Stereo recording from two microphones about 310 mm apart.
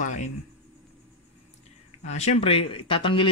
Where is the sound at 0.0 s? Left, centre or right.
Left.